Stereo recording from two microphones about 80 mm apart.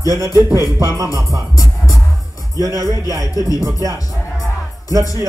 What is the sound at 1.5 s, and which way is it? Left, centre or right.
Music, left.